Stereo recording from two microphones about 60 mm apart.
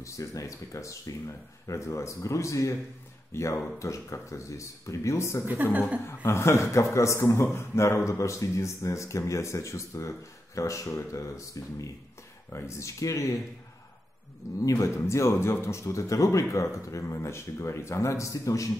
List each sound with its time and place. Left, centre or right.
0.0 s speech: left
3.8 s speech: left
5.5 s a woman's voice: right
5.9 s speech: left
12.5 s speech: left
14.6 s speech: left
15.0 s speech: left